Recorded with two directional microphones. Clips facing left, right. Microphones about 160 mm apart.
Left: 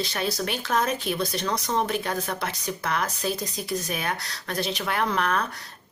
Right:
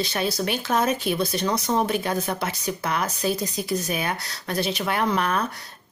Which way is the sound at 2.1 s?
20° right (ahead or behind).